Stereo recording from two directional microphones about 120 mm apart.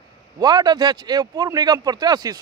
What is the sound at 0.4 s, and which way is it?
Speech, 35° right (ahead or behind).